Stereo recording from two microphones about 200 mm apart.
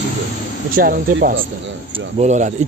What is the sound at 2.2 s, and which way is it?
Speech, 35° right (ahead or behind).